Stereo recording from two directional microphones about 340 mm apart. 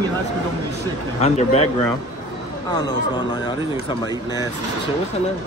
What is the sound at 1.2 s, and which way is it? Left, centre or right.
Speech, centre.